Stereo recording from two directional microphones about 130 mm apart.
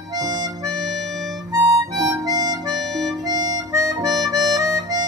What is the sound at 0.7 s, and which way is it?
Harmonica, centre (ahead or behind).